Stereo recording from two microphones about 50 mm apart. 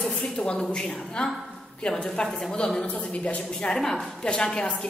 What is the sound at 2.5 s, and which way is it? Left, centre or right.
A woman's voice, centre.